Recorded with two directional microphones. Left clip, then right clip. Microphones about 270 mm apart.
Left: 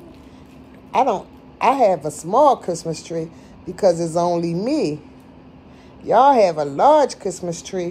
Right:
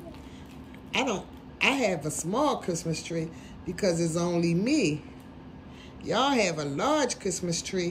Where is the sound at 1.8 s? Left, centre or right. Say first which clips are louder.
Left 12 dB; left.